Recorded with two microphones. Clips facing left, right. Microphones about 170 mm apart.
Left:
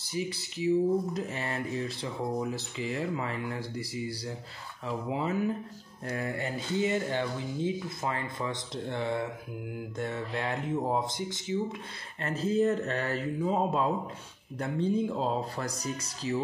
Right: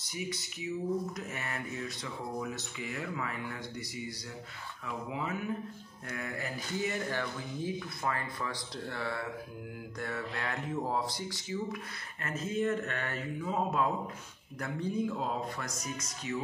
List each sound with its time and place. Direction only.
0.0 s speech: 30° left (ahead or behind)